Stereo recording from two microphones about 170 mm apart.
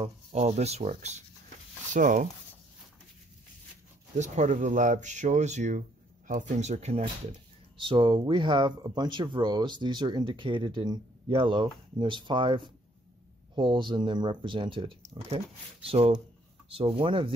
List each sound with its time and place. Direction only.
0.0 s speech: 40° right (ahead or behind)
4.2 s speech: 45° right (ahead or behind)
7.7 s speech: 30° right (ahead or behind)